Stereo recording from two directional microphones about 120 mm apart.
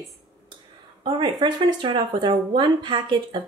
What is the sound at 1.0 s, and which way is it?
Speech, 40° right (ahead or behind).